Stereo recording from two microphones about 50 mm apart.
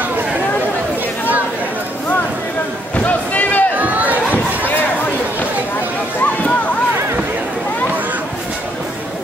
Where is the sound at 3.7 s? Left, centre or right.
Right.